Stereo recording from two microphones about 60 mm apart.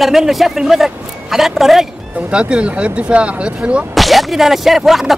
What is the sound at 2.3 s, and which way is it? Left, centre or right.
Speech, centre.